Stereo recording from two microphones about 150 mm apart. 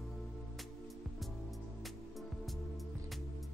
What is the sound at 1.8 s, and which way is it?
Music, centre (ahead or behind).